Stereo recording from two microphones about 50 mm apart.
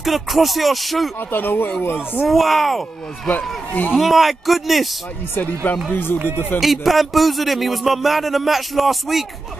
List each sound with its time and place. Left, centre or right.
0.0 s a man's voice: centre
1.3 s speech: left
2.2 s a man's voice: centre
3.3 s speech: left
3.9 s a man's voice: centre
5.3 s speech: left
6.6 s a man's voice: centre